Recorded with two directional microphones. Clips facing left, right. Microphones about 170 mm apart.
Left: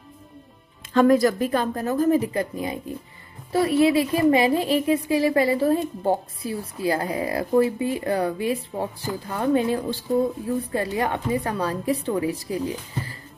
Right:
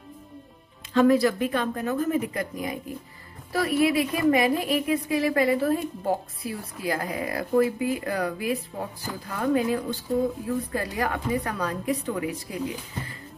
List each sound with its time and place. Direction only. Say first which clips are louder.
0.9 s a woman's voice: left 2 dB; 45° left (ahead or behind)